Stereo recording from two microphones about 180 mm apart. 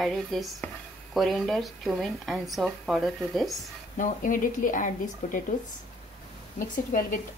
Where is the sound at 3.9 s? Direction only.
45° left (ahead or behind).